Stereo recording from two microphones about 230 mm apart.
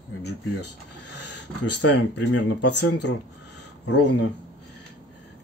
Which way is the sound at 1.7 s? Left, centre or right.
Left.